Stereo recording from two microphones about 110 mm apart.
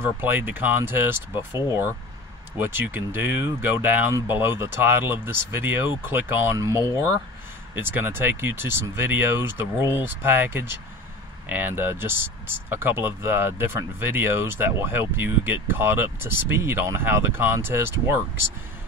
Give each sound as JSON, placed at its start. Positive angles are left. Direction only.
{"t": 0.0, "sound": "speech", "side_deg": -20}